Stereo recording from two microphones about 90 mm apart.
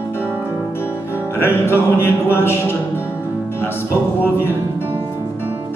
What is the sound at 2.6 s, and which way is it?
Music, 20° right (ahead or behind).